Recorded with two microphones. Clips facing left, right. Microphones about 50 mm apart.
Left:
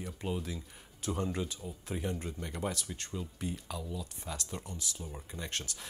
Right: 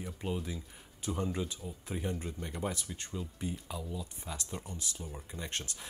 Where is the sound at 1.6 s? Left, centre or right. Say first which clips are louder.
Left 1 dB; centre.